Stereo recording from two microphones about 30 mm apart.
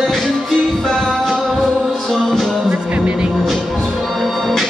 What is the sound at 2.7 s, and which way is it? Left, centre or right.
Music, right.